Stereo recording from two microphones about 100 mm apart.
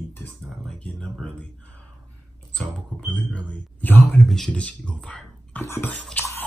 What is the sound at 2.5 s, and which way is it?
Speech, 10° left (ahead or behind).